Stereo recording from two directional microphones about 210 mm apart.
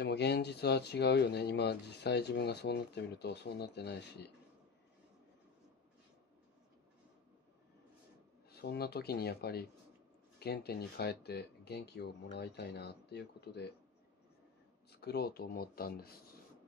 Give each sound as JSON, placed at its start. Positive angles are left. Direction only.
{"t": 0.0, "sound": "speech", "side_deg": 50}
{"t": 8.5, "sound": "speech", "side_deg": 50}
{"t": 14.9, "sound": "speech", "side_deg": 50}